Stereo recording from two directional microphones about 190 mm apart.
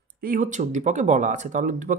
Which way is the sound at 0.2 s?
45° right (ahead or behind).